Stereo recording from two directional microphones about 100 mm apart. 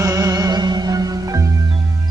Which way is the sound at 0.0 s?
30° right (ahead or behind).